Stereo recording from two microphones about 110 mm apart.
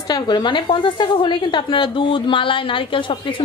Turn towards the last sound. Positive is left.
turn(degrees=50)  # may be behind; listen again after turning